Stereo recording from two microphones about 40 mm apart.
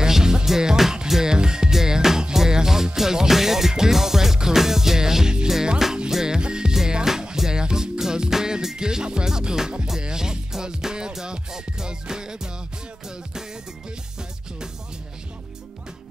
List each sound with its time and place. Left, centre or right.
0.0 s music: centre